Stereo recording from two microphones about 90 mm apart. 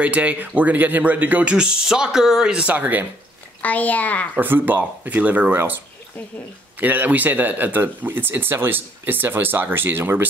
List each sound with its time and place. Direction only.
0.0 s speech: 15° right (ahead or behind)
3.6 s a child's voice: 15° left (ahead or behind)
4.4 s speech: 20° right (ahead or behind)
6.8 s speech: 20° right (ahead or behind)